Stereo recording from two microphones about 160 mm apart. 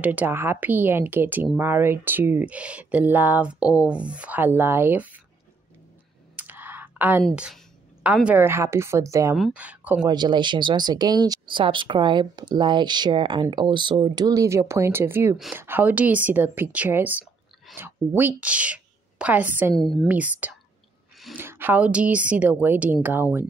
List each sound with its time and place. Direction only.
0.0 s speech: 10° right (ahead or behind)
6.3 s clicking: 10° right (ahead or behind)
7.2 s a woman's voice: centre (ahead or behind); by 9.4 s 20° right (ahead or behind)
9.4 s speech: 10° right (ahead or behind)
10.0 s a woman's voice: 25° right (ahead or behind); by 19.7 s 10° right (ahead or behind)
19.7 s a woman's voice: centre (ahead or behind)
20.1 s speech: 10° right (ahead or behind)